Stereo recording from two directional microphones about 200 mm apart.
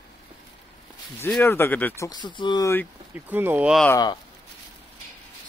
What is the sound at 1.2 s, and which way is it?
Speech, 10° left (ahead or behind).